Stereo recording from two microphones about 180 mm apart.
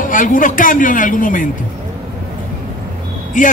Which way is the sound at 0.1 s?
50° left (ahead or behind).